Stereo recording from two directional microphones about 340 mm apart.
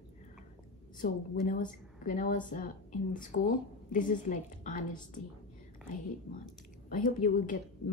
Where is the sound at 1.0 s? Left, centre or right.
Left.